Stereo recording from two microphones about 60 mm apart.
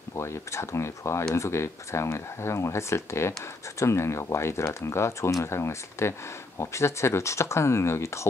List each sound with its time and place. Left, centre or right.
0.1 s speech: left